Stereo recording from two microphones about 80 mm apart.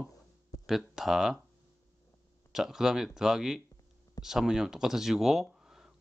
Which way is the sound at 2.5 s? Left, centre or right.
Centre.